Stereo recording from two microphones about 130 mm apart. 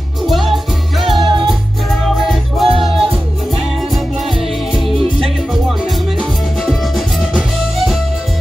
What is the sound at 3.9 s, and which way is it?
Music, centre (ahead or behind).